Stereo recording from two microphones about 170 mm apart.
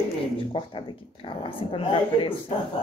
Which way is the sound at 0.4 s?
30° left (ahead or behind).